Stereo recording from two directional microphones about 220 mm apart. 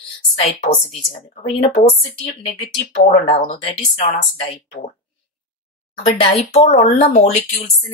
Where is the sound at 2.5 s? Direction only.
30° left (ahead or behind).